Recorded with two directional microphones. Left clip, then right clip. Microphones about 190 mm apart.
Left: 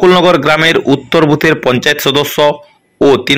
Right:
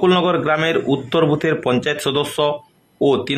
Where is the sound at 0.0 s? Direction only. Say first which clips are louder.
Left 9 dB; 20° left (ahead or behind).